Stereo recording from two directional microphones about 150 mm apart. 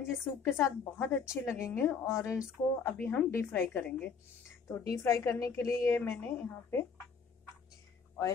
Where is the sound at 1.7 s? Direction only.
15° left (ahead or behind).